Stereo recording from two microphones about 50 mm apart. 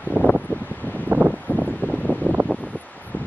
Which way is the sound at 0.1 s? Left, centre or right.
Left.